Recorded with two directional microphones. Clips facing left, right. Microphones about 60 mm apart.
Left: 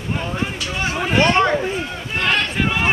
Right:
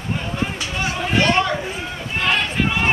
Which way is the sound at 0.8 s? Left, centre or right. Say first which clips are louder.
Left 2 dB; centre.